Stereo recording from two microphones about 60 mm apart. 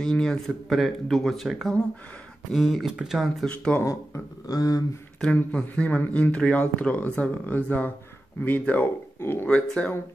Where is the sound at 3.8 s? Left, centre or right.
Left.